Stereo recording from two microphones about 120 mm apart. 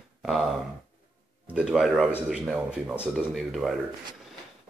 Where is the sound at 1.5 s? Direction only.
5° right (ahead or behind).